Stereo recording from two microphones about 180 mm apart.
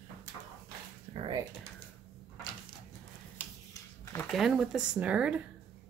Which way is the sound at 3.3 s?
15° left (ahead or behind).